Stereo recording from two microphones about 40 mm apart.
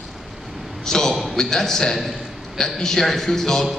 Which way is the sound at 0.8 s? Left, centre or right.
Centre.